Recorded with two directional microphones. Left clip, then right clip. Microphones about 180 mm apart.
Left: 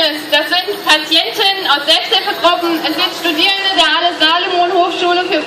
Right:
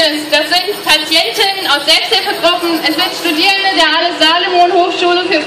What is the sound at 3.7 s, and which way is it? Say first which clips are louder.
Speech: right 1 dB; 10° right (ahead or behind).